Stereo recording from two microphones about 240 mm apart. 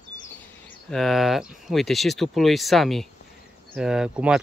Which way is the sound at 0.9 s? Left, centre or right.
Centre.